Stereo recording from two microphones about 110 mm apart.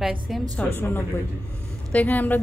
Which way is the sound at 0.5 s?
15° left (ahead or behind).